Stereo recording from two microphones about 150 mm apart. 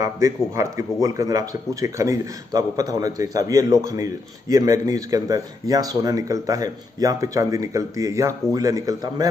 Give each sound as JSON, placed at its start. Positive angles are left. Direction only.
{"t": 0.0, "sound": "a man's voice", "side_deg": -20}